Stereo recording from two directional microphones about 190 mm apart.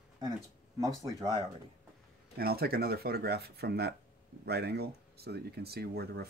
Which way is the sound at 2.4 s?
55° right (ahead or behind).